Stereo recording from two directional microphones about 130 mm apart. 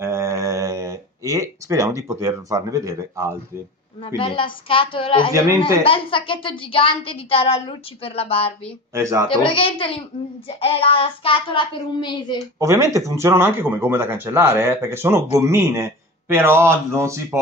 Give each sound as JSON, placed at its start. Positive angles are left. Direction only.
{"t": 0.0, "sound": "a sound", "side_deg": -20}
{"t": 4.6, "sound": "speech", "side_deg": 45}
{"t": 8.9, "sound": "speech", "side_deg": -25}
{"t": 9.5, "sound": "a child's voice", "side_deg": 40}
{"t": 12.5, "sound": "speech", "side_deg": -25}